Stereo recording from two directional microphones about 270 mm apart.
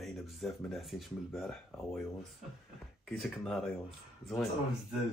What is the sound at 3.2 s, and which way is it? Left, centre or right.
Speech, centre.